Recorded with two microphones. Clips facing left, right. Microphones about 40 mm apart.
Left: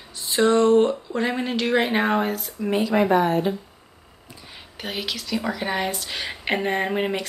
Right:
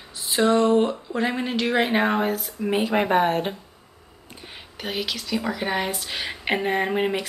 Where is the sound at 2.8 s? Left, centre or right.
Right.